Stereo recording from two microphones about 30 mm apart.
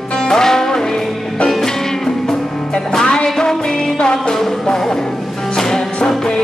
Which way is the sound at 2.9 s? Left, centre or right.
Left.